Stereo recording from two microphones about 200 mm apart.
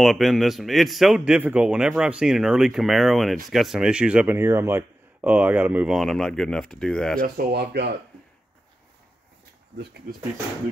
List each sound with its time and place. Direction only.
0.0 s a man's voice: centre (ahead or behind)
7.2 s speech: 45° right (ahead or behind)
10.1 s speech: 40° right (ahead or behind)